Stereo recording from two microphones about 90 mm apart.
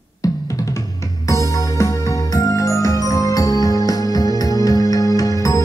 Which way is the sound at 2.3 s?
40° left (ahead or behind).